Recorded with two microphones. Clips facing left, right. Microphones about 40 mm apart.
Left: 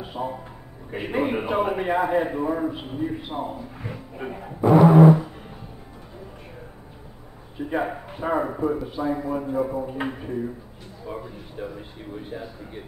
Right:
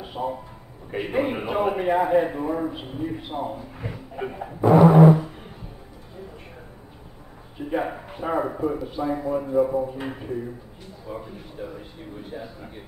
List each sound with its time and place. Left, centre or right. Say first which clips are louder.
0.0 s a man's voice: right 1 dB; centre
7.7 s a man's voice: even; centre
11.1 s a man's voice: left 1 dB; centre